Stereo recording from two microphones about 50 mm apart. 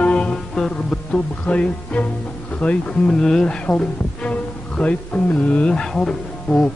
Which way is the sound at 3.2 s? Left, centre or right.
Centre.